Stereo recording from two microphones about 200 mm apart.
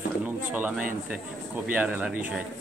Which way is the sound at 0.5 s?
10° right (ahead or behind).